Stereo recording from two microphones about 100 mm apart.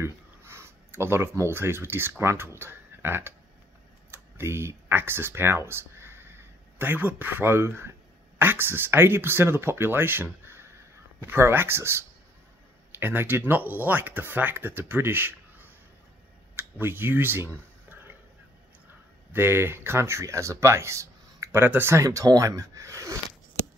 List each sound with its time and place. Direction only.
0.0 s speech: 25° right (ahead or behind)
13.0 s speech: 20° right (ahead or behind)
16.5 s a sound: 20° right (ahead or behind)
19.3 s speech: 25° right (ahead or behind)